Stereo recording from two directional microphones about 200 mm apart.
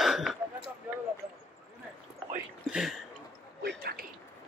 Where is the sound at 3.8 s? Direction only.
50° right (ahead or behind).